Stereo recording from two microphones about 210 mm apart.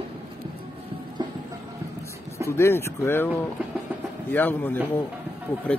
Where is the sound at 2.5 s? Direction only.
10° left (ahead or behind).